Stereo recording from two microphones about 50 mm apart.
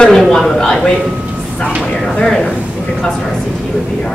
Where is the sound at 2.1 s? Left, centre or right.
Centre.